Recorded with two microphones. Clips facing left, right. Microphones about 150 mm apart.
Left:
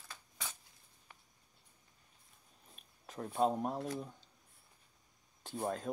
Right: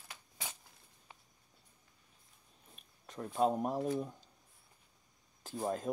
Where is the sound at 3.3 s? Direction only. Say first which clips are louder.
Right 1 dB; 5° right (ahead or behind).